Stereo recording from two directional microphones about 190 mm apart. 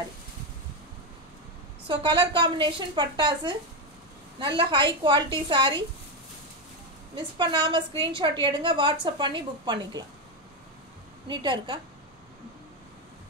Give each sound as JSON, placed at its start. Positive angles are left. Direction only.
{"t": 1.9, "sound": "a woman's voice", "side_deg": -25}
{"t": 7.2, "sound": "a woman's voice", "side_deg": -25}
{"t": 11.2, "sound": "a woman's voice", "side_deg": -25}